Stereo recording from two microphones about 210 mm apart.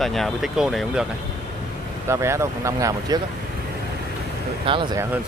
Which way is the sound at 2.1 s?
15° right (ahead or behind).